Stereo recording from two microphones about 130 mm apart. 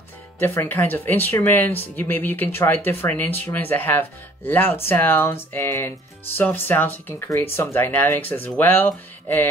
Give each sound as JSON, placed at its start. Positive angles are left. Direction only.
{"t": 0.4, "sound": "speech", "side_deg": 15}